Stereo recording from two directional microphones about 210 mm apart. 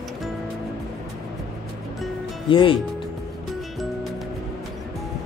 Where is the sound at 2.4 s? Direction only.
25° left (ahead or behind).